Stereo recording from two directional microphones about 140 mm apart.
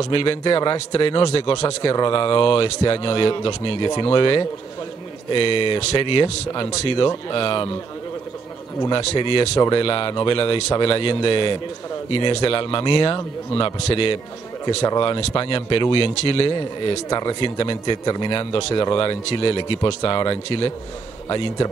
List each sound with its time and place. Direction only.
0.0 s a man's voice: 40° left (ahead or behind)
8.8 s a man's voice: 35° left (ahead or behind)